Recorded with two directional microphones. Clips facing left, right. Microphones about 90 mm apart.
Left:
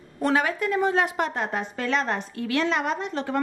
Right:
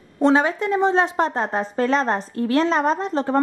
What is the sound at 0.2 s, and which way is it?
Speech, 25° right (ahead or behind).